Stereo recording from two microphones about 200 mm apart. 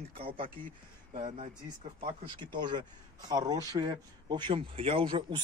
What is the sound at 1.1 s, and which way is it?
Speech, 35° right (ahead or behind).